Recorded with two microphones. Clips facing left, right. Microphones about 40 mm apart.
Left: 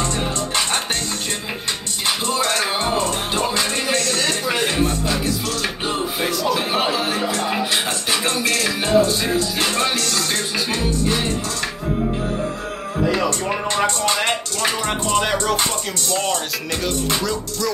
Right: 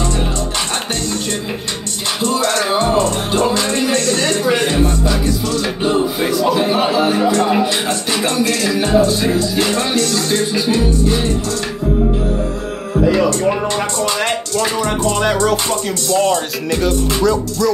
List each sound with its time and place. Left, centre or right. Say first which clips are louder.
5.9 s music: right 7 dB; centre
7.0 s chatter: right 7 dB; centre
7.2 s speech: right 8 dB; centre
7.7 s music: right 3 dB; centre
10.1 s music: right 6 dB; left
15.7 s speech: right 7 dB; right
16.8 s music: right 7 dB; centre